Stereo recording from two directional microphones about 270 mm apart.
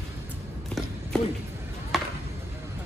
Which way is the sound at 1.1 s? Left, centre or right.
Centre.